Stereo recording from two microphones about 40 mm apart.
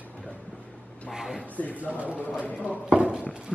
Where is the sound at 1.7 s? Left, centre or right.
Right.